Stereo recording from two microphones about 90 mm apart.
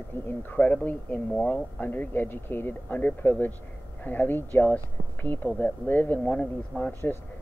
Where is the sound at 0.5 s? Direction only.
15° left (ahead or behind).